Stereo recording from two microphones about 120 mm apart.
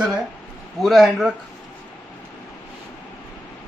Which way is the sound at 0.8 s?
Centre (ahead or behind).